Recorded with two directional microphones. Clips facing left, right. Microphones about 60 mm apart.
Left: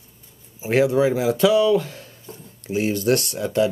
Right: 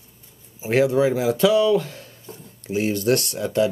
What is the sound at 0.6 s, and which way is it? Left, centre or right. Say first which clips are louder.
Speech: even; centre.